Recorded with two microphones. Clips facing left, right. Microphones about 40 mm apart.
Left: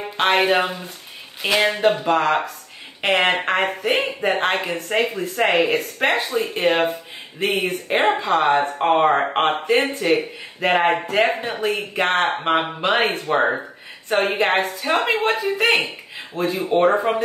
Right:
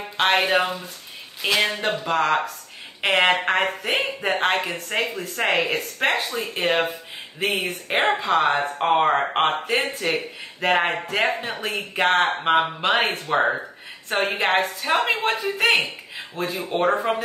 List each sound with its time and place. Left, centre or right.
0.2 s speech: centre
14.5 s speech: centre